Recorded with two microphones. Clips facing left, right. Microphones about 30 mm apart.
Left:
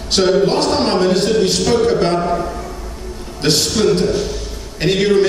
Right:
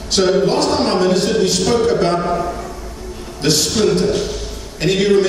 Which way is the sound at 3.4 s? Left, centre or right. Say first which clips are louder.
Left 1 dB; centre.